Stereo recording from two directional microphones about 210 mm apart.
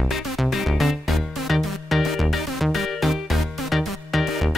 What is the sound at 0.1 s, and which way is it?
Music, centre (ahead or behind).